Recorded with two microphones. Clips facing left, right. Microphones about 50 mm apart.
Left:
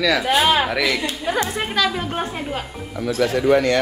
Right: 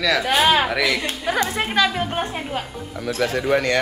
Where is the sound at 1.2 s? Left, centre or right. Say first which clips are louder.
Right 1 dB; centre.